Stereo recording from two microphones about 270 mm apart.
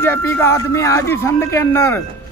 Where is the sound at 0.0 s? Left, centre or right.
Centre.